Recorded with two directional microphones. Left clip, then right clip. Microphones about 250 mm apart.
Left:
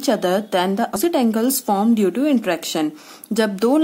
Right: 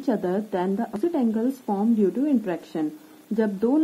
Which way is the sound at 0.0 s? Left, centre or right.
Centre.